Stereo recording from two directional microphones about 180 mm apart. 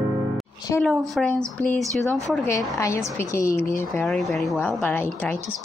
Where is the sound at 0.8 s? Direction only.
Centre (ahead or behind).